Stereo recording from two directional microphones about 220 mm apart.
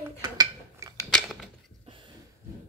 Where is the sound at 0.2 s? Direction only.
15° right (ahead or behind).